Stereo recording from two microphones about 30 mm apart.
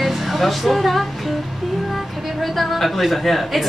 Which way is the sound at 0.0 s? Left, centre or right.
Centre.